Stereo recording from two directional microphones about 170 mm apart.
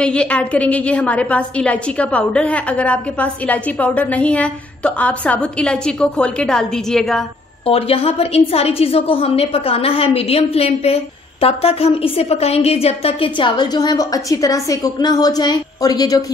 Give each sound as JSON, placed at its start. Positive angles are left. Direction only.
{"t": 0.0, "sound": "a woman's voice", "side_deg": 5}
{"t": 7.6, "sound": "a woman's voice", "side_deg": 35}